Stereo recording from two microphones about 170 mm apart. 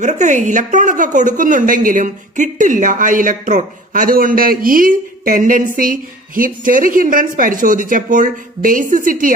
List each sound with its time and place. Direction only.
0.0 s a woman's voice: 45° right (ahead or behind)